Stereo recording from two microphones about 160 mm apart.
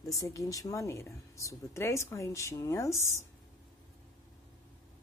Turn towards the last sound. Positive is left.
turn(degrees=20)  # may be behind; listen again after turning